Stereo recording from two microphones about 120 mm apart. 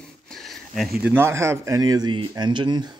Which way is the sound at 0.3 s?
Centre (ahead or behind).